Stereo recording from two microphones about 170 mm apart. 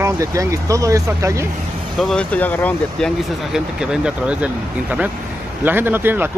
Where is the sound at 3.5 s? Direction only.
5° right (ahead or behind).